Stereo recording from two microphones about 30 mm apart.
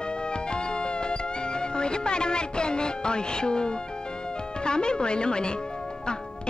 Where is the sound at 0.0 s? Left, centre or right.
Left.